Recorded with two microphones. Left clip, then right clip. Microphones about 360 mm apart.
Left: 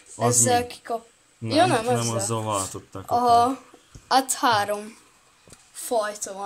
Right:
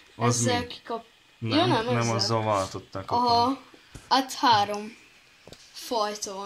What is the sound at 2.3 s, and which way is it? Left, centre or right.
Speech, centre.